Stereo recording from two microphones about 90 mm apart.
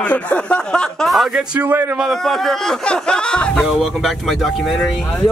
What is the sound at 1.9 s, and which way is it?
Speech, centre (ahead or behind).